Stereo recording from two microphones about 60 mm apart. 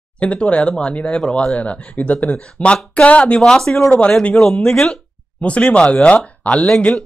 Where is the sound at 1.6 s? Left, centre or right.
Left; by 3.9 s centre.